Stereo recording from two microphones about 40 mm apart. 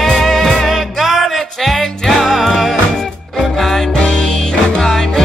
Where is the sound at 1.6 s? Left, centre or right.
Centre.